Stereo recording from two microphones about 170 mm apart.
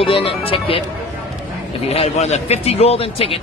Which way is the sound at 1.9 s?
35° left (ahead or behind).